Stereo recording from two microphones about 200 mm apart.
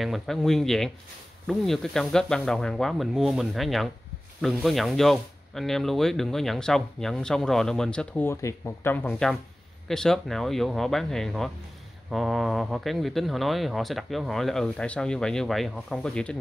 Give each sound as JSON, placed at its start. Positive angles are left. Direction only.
{"t": 0.0, "sound": "speech", "side_deg": 0}